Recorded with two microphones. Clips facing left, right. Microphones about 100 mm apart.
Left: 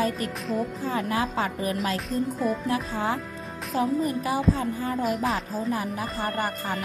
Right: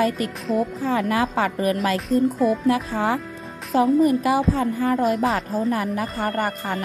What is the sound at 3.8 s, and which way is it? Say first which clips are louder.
A woman's voice: right 8 dB; 75° right (ahead or behind).